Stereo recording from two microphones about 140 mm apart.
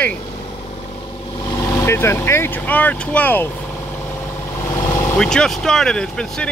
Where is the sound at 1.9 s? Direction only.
20° left (ahead or behind).